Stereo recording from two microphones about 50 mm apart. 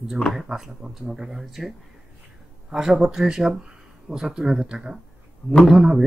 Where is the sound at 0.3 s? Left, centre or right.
Centre.